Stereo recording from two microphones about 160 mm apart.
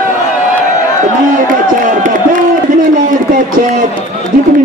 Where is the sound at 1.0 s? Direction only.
60° right (ahead or behind).